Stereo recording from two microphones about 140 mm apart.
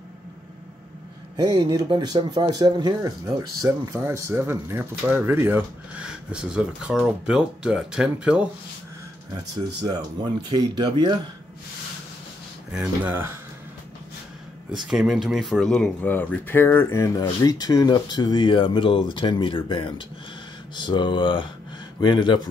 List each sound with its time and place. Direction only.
1.3 s speech: 30° right (ahead or behind); by 8.5 s 10° right (ahead or behind)
9.3 s speech: 30° right (ahead or behind)
12.7 s speech: 15° right (ahead or behind)
14.9 s speech: 5° right (ahead or behind); by 22.4 s 35° left (ahead or behind)